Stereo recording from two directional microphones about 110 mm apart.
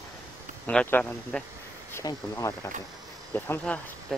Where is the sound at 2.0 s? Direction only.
30° left (ahead or behind).